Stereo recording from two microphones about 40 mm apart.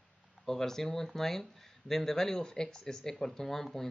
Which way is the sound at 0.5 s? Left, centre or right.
Centre.